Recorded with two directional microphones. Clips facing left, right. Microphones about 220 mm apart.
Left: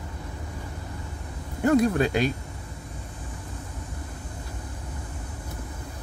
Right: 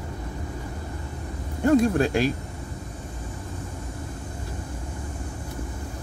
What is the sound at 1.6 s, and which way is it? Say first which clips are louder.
Speech: right 1 dB; 30° right (ahead or behind).